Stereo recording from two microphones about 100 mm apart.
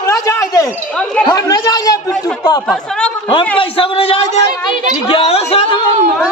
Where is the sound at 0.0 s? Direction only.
30° left (ahead or behind).